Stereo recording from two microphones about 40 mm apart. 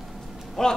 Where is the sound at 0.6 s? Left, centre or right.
Centre.